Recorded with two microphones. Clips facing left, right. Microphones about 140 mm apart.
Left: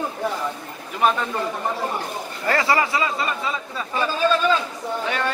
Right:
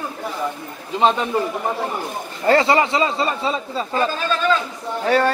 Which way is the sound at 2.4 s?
25° right (ahead or behind).